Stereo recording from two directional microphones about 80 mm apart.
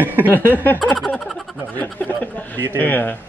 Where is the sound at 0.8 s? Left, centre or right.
Centre.